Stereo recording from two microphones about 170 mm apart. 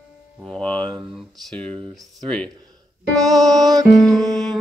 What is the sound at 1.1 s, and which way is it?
A man's voice, 5° left (ahead or behind).